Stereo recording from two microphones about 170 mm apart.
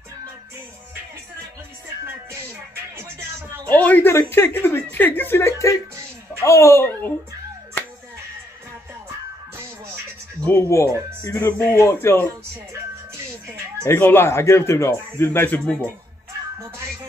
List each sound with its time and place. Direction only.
3.6 s speech: 10° left (ahead or behind)
10.4 s speech: 15° left (ahead or behind)
13.8 s speech: 15° left (ahead or behind)